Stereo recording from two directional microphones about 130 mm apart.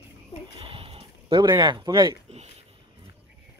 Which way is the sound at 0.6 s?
45° right (ahead or behind).